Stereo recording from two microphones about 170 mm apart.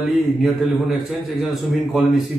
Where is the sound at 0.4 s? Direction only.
Centre (ahead or behind).